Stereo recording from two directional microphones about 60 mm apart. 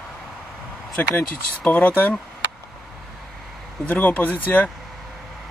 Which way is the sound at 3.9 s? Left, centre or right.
Left.